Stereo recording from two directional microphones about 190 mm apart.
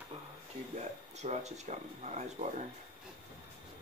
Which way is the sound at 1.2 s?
35° right (ahead or behind).